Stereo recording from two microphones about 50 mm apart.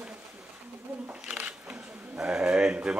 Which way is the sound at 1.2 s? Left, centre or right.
Right.